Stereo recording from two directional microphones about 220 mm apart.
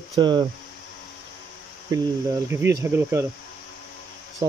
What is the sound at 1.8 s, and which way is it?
Speech, 15° right (ahead or behind).